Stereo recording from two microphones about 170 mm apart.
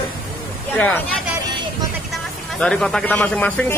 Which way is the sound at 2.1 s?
5° left (ahead or behind).